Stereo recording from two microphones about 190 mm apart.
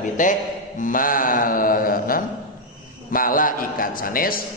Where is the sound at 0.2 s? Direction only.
45° left (ahead or behind).